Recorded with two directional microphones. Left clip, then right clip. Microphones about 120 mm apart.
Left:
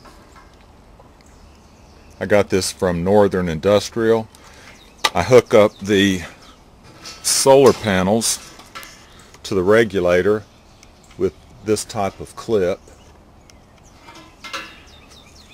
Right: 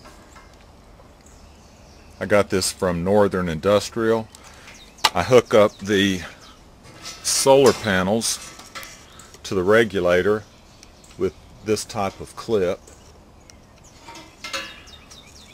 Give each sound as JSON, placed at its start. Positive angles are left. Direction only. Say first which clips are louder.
{"t": 2.1, "sound": "speech", "louder": "left 3 dB", "side_deg": 35}
{"t": 7.3, "sound": "speech", "louder": "left 3 dB", "side_deg": 40}
{"t": 9.4, "sound": "speech", "louder": "left 2 dB", "side_deg": 40}
{"t": 14.4, "sound": "a sound", "louder": "even", "side_deg": -30}